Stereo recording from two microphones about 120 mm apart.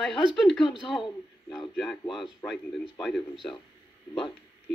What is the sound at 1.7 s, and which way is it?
Speech, centre (ahead or behind).